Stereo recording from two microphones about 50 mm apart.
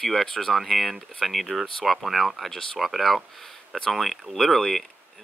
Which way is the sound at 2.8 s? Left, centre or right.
Centre.